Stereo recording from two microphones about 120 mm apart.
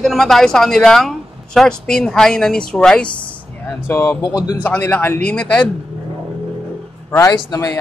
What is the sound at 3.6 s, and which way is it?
Speech, 20° left (ahead or behind).